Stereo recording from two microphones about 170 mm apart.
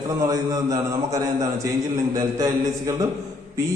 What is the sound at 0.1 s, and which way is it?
A man's voice, 20° right (ahead or behind).